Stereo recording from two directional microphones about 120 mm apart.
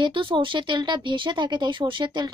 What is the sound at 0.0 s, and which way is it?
Speech, 45° right (ahead or behind).